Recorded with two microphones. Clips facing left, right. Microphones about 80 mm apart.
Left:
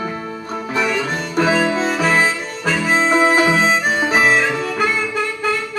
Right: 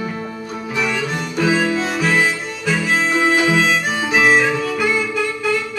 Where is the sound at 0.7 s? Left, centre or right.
Left.